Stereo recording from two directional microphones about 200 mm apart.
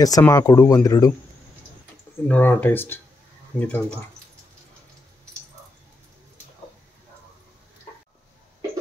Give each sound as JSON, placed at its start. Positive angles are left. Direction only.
{"t": 0.0, "sound": "speech", "side_deg": 20}
{"t": 2.2, "sound": "speech", "side_deg": 10}